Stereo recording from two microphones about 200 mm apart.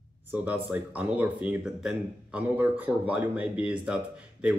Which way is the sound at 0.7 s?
5° right (ahead or behind).